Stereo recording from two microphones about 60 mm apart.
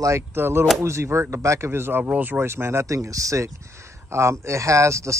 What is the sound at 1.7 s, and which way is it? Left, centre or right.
Speech, right.